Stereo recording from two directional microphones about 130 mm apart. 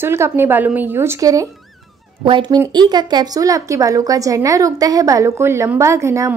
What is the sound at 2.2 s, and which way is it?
A woman's voice, 40° right (ahead or behind).